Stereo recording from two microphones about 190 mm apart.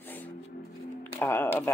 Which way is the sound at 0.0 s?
10° left (ahead or behind).